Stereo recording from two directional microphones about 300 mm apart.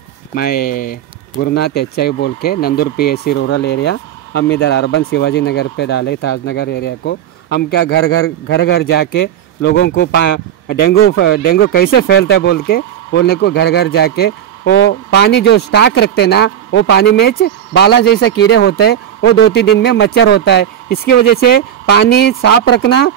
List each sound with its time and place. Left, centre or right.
0.3 s speech: left